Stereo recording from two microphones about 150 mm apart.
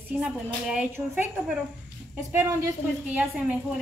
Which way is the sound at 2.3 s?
15° right (ahead or behind).